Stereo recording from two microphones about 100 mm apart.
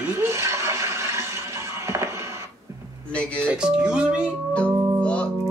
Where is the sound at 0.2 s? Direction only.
30° right (ahead or behind).